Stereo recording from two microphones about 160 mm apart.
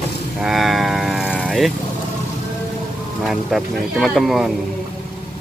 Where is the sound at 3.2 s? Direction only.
Centre (ahead or behind).